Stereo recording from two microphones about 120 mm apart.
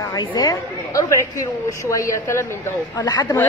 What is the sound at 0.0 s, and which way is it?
A woman's voice, 35° left (ahead or behind).